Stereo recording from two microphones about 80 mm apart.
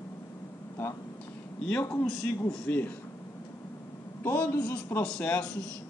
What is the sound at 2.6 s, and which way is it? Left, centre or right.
Speech, left.